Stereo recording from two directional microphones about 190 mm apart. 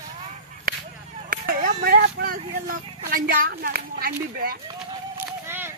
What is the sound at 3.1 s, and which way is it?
Speech, 50° right (ahead or behind).